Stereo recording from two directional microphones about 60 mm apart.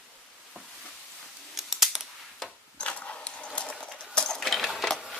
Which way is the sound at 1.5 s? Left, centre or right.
Centre.